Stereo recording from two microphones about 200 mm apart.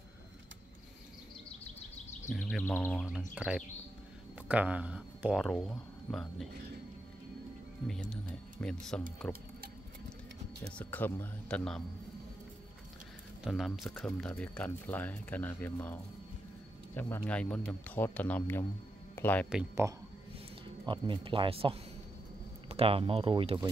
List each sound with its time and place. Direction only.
2.5 s speech: 10° left (ahead or behind)
3.3 s speech: 5° right (ahead or behind)
8.1 s speech: 5° left (ahead or behind)
10.8 s speech: 10° left (ahead or behind)
13.4 s speech: centre (ahead or behind)
19.1 s music: 10° left (ahead or behind)
20.8 s speech: 25° right (ahead or behind)